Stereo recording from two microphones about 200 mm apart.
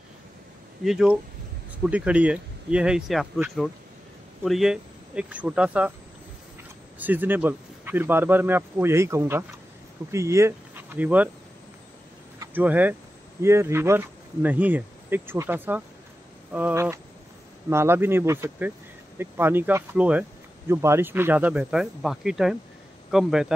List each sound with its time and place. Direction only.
0.8 s speech: 5° right (ahead or behind)
7.0 s speech: 10° right (ahead or behind)
12.4 s speech: 10° right (ahead or behind)